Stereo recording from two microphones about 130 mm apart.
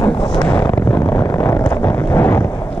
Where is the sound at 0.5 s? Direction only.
15° left (ahead or behind).